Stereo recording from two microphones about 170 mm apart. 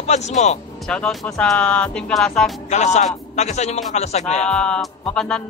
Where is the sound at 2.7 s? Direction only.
40° left (ahead or behind).